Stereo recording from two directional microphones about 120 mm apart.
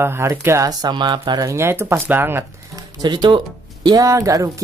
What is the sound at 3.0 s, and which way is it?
Speech, 40° right (ahead or behind).